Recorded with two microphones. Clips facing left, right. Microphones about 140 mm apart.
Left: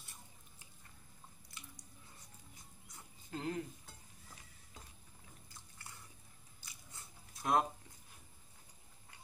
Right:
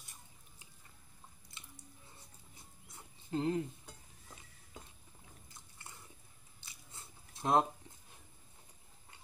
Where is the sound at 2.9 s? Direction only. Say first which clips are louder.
Right 7 dB; 25° right (ahead or behind).